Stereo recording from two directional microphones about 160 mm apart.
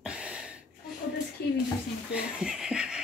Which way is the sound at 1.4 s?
85° left.